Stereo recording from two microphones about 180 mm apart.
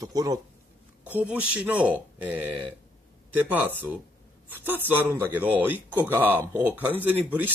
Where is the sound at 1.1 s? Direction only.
10° right (ahead or behind).